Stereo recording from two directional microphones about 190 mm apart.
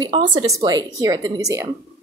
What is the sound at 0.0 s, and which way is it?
A woman's voice, 25° right (ahead or behind).